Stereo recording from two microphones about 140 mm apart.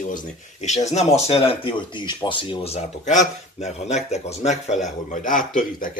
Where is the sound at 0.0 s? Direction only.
60° left (ahead or behind).